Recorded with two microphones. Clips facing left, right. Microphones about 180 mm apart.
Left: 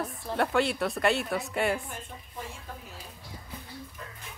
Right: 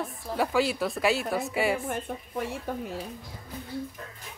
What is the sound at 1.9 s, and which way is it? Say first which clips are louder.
Speech: right 10 dB; 70° right (ahead or behind).